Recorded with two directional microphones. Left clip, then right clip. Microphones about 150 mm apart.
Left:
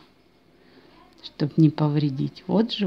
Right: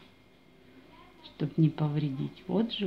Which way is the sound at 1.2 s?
85° left.